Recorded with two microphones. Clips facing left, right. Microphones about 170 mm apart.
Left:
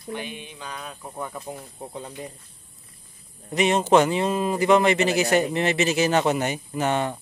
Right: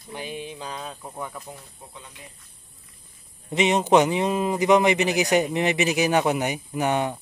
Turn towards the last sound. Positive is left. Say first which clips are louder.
# even
turn(degrees=-15)  # may be behind; listen again after turning